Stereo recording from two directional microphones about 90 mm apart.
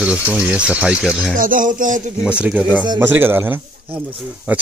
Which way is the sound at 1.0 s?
Centre (ahead or behind).